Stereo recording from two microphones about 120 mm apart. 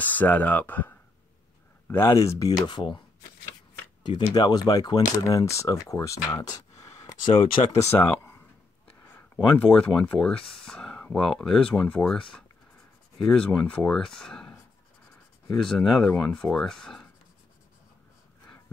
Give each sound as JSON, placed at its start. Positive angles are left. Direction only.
{"t": 0.0, "sound": "speech", "side_deg": 15}
{"t": 4.0, "sound": "speech", "side_deg": 35}
{"t": 7.6, "sound": "speech", "side_deg": 55}
{"t": 7.9, "sound": "speech", "side_deg": 15}
{"t": 13.2, "sound": "speech", "side_deg": 5}